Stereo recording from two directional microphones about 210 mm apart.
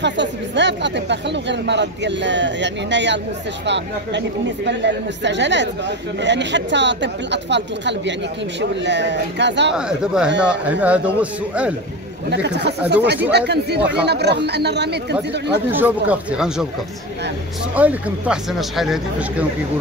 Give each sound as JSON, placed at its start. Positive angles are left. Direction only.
{"t": 0.0, "sound": "speech", "side_deg": -55}
{"t": 9.8, "sound": "a man's voice", "side_deg": -5}
{"t": 12.3, "sound": "speech", "side_deg": -55}
{"t": 15.7, "sound": "speech", "side_deg": -10}
{"t": 17.7, "sound": "speech", "side_deg": -5}